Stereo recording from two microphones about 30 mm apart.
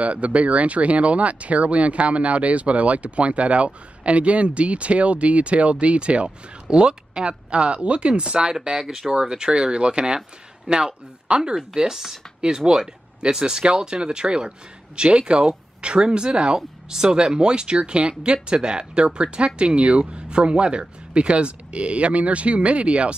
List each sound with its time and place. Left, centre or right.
0.0 s speech: right
8.8 s speech: centre
9.1 s speech: right
9.5 s speech: right
11.5 s speech: centre; by 23.1 s right